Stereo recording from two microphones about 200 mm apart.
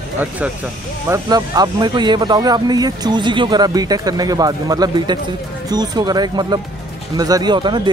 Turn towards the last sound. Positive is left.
turn(degrees=-20)  # may be behind; listen again after turning